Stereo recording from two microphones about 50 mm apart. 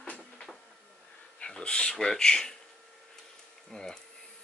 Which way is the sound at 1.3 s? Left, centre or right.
Centre.